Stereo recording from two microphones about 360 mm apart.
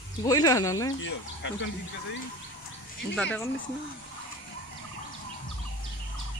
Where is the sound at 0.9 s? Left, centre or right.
Left.